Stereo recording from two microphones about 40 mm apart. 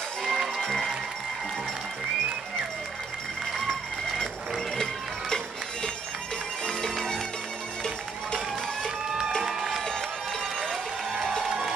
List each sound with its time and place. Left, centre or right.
0.2 s music: centre
6.6 s music: centre
9.4 s music: centre